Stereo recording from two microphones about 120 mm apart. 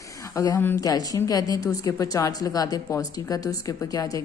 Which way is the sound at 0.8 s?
30° left (ahead or behind).